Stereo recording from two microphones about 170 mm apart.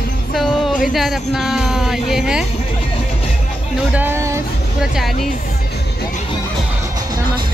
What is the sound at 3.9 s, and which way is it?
Speech, 10° right (ahead or behind).